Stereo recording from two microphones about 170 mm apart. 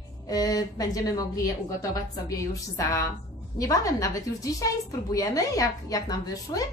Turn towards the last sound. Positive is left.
turn(degrees=20)  # may be behind; listen again after turning